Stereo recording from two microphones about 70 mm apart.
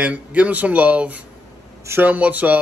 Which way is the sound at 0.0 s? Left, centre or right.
Right.